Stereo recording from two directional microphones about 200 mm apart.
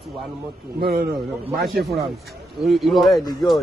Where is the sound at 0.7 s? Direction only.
50° right (ahead or behind).